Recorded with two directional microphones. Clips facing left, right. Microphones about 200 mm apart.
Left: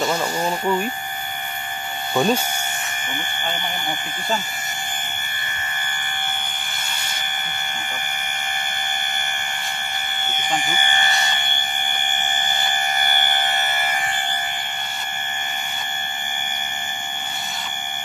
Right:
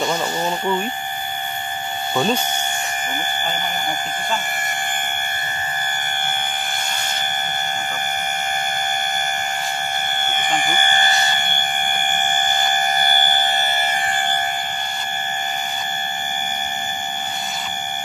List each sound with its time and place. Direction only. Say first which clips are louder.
0.0 s speech: even; centre (ahead or behind)
2.1 s speech: left 1 dB; 5° left (ahead or behind)
10.2 s a sound: right 2 dB; 55° right (ahead or behind)
12.1 s fire alarm: right 5 dB; 45° right (ahead or behind); by 13.9 s 30° right (ahead or behind)